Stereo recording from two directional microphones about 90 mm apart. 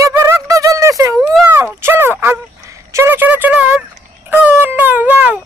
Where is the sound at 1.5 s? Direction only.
25° right (ahead or behind).